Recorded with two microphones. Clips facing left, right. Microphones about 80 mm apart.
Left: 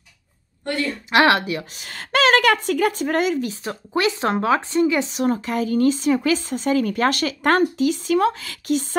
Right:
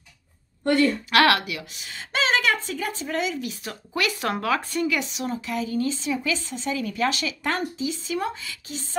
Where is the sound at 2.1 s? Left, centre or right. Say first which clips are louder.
Left 7 dB; left.